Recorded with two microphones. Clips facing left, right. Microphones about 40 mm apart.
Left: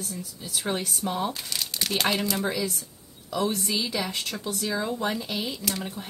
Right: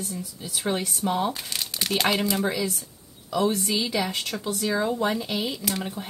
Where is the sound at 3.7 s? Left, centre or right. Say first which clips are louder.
Right 3 dB; centre.